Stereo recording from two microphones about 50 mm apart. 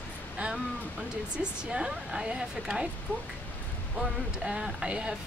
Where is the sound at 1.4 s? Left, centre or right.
Centre.